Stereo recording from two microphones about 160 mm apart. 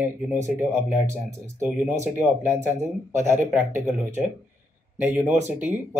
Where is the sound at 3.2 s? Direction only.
15° right (ahead or behind).